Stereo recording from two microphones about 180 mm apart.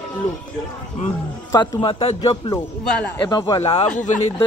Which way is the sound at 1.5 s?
20° left (ahead or behind).